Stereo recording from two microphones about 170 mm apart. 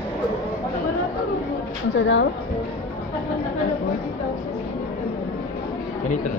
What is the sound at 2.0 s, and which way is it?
Speech, 90° left.